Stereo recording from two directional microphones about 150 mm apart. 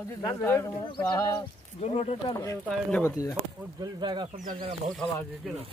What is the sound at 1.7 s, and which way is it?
Speech, 45° left (ahead or behind).